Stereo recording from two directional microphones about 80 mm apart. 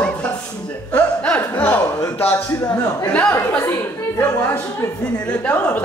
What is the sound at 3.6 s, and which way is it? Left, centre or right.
Speech, left.